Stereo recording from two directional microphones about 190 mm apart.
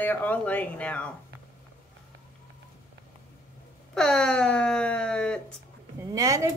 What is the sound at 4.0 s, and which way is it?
Speech, 5° left (ahead or behind).